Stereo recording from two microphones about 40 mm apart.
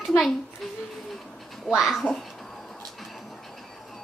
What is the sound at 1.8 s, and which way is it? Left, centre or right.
Speech, centre.